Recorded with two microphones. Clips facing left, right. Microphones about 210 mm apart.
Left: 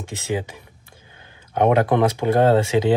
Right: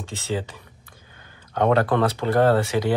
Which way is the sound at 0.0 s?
15° left (ahead or behind).